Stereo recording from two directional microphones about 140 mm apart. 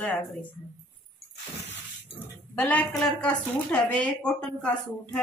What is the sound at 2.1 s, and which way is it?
Speech, 10° left (ahead or behind).